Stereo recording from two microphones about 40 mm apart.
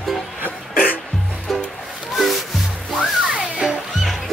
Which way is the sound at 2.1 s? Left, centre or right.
Centre.